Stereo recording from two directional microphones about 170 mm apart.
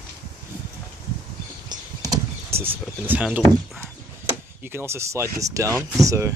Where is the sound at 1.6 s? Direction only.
20° right (ahead or behind).